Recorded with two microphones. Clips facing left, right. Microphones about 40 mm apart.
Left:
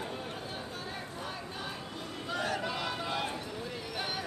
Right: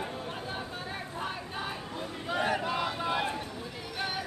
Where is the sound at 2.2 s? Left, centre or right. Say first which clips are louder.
Right 4 dB; right.